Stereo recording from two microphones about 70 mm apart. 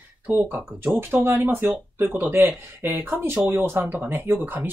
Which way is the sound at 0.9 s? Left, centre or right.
Right.